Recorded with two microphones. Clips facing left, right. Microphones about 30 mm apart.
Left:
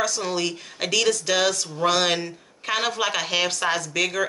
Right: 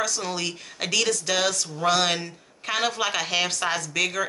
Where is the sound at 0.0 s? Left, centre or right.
Centre.